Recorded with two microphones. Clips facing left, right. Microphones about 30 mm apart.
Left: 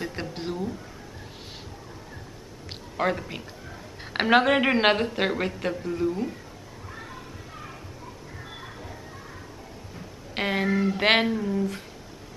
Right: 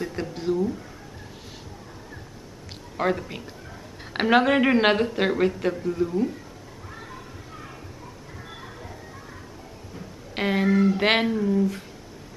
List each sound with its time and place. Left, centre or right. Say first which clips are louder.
0.0 s speech: right 3 dB; left
3.0 s a man's voice: right 1 dB; centre
6.9 s children playing: even; centre
9.9 s speech: right 1 dB; centre